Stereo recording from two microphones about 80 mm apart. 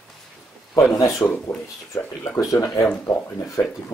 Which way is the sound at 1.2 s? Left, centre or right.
Left.